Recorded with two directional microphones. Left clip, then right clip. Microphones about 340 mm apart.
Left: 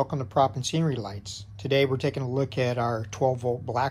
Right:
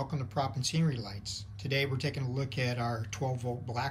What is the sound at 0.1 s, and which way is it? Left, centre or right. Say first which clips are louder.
Speech: left 11 dB; centre.